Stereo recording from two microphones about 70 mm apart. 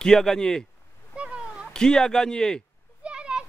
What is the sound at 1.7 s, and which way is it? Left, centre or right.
Speech, centre.